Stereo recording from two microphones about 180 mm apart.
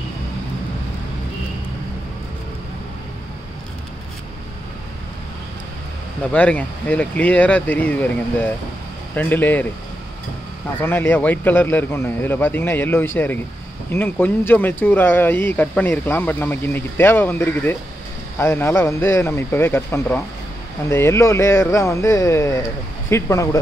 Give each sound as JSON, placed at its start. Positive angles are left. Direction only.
{"t": 6.3, "sound": "speech", "side_deg": 10}
{"t": 10.8, "sound": "speech", "side_deg": 10}